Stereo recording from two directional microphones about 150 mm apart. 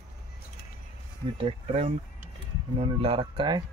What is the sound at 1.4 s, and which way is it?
Speech, 45° right (ahead or behind).